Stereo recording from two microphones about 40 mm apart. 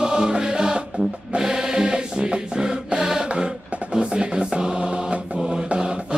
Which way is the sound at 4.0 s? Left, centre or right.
Right.